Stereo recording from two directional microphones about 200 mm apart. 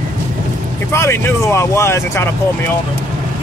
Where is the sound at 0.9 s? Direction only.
10° left (ahead or behind).